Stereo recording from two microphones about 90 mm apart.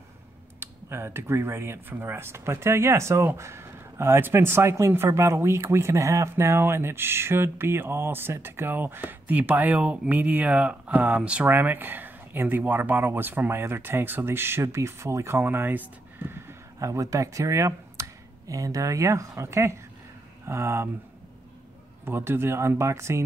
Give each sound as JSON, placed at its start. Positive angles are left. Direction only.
{"t": 0.6, "sound": "speech", "side_deg": -25}
{"t": 22.0, "sound": "speech", "side_deg": -25}